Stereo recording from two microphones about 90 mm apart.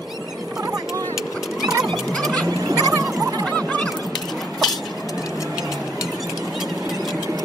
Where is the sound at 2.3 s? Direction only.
40° right (ahead or behind).